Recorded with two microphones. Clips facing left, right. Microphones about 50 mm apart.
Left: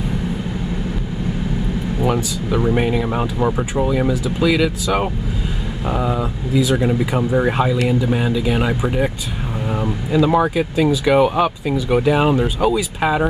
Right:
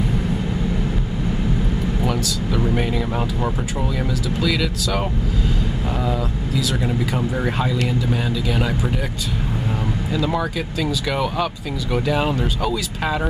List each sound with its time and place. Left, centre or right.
2.0 s speech: centre
10.1 s speech: left